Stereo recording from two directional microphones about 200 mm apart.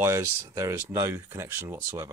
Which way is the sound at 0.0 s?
15° right (ahead or behind).